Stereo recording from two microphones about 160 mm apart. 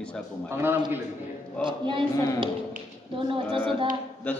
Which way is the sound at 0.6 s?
15° right (ahead or behind).